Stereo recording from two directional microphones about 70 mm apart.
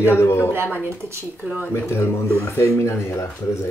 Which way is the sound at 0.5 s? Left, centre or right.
Right.